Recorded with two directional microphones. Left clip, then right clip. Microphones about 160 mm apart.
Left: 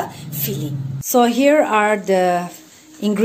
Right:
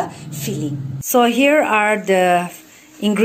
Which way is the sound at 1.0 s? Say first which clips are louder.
Even; centre (ahead or behind).